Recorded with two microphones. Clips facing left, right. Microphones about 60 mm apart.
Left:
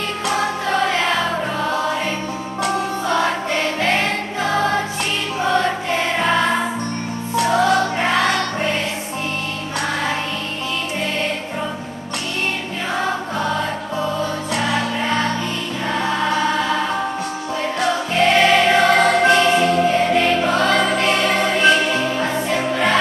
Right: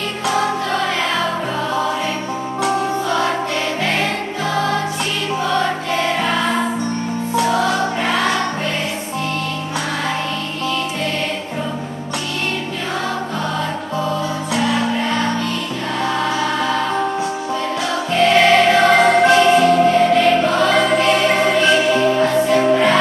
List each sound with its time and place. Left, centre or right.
4.0 s music: left
5.9 s music: centre
14.5 s music: centre
16.0 s choir: centre
18.4 s music: centre